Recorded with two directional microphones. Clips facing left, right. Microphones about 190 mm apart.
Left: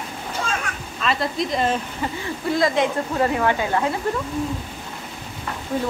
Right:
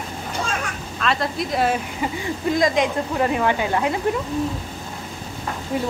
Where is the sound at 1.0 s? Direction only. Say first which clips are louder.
Even; centre (ahead or behind); by 3.9 s 15° right (ahead or behind).